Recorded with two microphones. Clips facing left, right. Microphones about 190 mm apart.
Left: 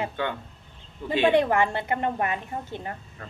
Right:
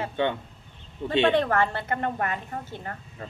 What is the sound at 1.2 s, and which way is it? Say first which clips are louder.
A woman's voice: left 2 dB; 15° left (ahead or behind).